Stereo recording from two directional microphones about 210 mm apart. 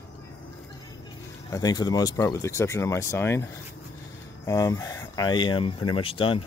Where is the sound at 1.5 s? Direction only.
15° left (ahead or behind).